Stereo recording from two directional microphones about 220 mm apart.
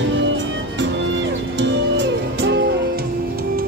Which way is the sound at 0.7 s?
55° right (ahead or behind).